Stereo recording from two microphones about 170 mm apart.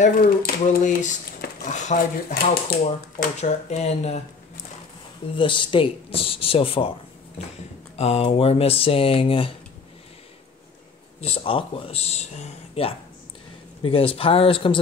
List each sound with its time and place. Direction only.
0.0 s speech: 55° left (ahead or behind)
2.3 s speech: 65° left (ahead or behind)
3.3 s speech: 40° left (ahead or behind)
5.3 s speech: 30° left (ahead or behind)
7.9 s speech: 40° left (ahead or behind)
11.1 s speech: 35° left (ahead or behind)